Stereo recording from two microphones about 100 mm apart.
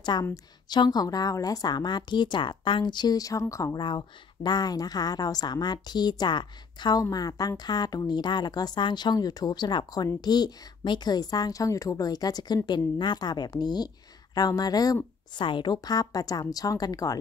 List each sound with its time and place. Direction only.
0.2 s speech: 40° left (ahead or behind)
3.7 s a woman's voice: 50° left (ahead or behind)
15.3 s a woman's voice: 50° left (ahead or behind)